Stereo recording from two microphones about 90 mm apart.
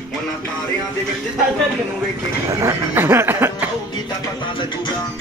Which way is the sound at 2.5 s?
40° right (ahead or behind).